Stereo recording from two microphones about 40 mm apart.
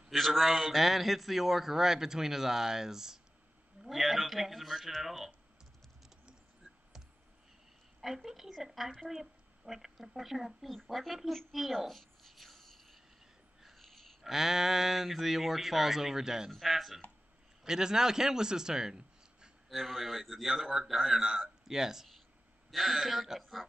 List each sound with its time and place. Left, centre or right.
0.1 s a man's voice: centre
8.3 s a man's voice: centre
13.6 s a sound: centre
16.5 s a man's voice: centre
17.6 s a man's voice: centre
19.7 s a man's voice: centre